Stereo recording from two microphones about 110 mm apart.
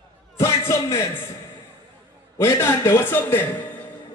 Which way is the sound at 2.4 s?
25° left (ahead or behind).